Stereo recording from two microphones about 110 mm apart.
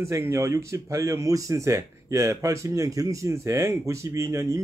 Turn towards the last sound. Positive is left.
turn(degrees=-25)  # may be behind; listen again after turning